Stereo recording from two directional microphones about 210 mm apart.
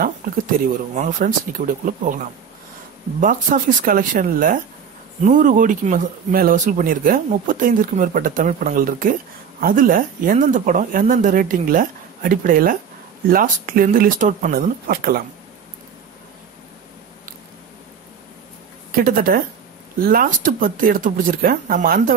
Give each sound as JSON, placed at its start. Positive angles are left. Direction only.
{"t": 0.2, "sound": "speech", "side_deg": -45}
{"t": 3.2, "sound": "speech", "side_deg": -40}
{"t": 18.9, "sound": "speech", "side_deg": -45}